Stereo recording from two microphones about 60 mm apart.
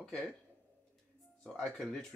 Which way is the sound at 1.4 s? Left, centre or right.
Centre.